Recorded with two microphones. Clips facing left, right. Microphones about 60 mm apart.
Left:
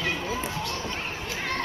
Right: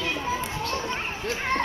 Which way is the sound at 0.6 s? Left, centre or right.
Right.